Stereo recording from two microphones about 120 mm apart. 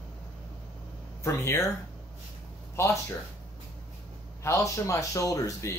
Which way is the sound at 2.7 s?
25° left (ahead or behind).